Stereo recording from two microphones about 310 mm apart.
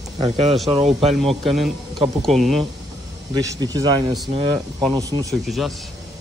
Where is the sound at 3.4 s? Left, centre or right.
Centre.